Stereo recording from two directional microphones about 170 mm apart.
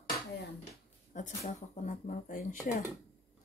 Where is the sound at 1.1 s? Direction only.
45° left (ahead or behind).